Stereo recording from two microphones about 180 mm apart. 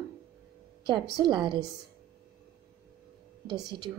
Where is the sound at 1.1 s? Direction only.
25° right (ahead or behind).